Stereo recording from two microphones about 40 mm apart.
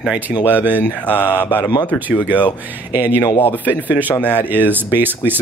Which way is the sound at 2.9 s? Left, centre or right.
Right.